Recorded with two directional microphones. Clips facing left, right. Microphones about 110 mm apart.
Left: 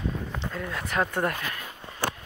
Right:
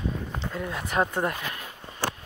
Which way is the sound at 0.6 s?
20° right (ahead or behind).